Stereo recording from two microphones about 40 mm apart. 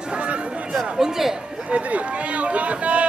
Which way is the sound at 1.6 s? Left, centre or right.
Right.